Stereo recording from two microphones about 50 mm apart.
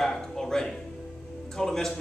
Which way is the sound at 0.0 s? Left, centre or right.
Centre.